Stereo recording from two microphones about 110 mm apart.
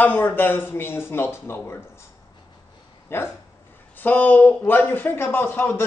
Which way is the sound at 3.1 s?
20° left (ahead or behind).